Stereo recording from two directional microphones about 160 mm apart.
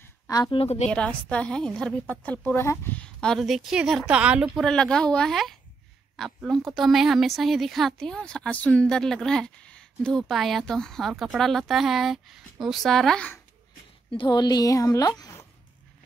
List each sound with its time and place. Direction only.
0.0 s a woman's voice: 25° left (ahead or behind)
0.8 s a woman's voice: 5° left (ahead or behind)
14.1 s a woman's voice: 30° left (ahead or behind)